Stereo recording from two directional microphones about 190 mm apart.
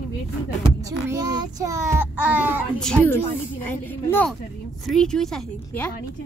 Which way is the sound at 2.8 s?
5° left (ahead or behind).